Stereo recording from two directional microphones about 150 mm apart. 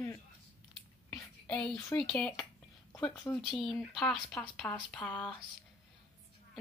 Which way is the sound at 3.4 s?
Centre (ahead or behind).